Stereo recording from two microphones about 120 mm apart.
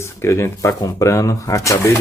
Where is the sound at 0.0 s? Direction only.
25° left (ahead or behind).